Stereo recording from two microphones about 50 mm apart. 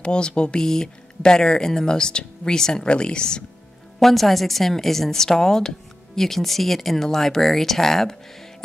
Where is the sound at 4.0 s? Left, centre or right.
Centre.